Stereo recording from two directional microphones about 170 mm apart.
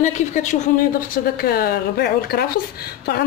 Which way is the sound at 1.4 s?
65° left (ahead or behind).